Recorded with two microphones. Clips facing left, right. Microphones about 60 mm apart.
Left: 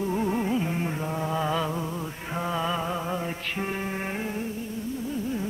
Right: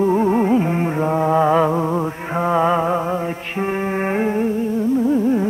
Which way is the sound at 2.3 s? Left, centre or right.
Right.